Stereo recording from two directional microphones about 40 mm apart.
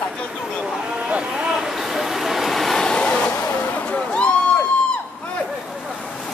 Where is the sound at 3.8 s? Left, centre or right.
Left.